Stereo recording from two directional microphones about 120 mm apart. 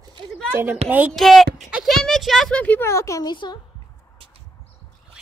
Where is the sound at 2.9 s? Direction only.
25° left (ahead or behind).